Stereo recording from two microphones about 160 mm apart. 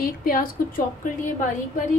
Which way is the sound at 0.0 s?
65° left (ahead or behind).